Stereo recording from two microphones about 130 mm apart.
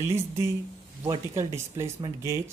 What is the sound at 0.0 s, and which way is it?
Speech, 20° right (ahead or behind).